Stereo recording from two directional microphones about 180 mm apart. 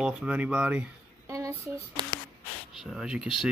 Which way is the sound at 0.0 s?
5° right (ahead or behind).